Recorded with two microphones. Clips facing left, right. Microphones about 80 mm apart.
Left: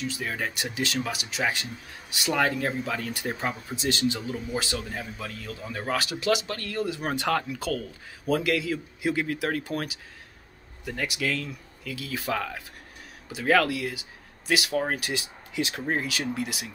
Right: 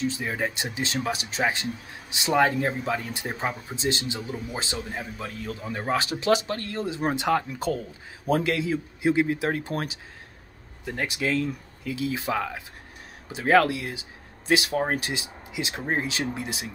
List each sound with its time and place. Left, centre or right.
0.0 s speech: right
8.3 s speech: right